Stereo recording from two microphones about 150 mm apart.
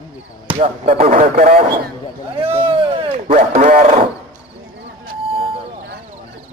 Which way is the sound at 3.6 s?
60° right (ahead or behind).